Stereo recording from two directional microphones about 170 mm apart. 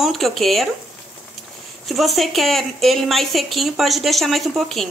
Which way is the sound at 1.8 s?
Centre (ahead or behind).